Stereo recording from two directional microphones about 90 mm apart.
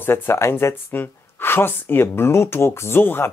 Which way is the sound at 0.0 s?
25° left (ahead or behind).